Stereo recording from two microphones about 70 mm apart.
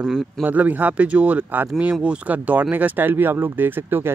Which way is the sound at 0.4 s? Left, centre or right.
Right.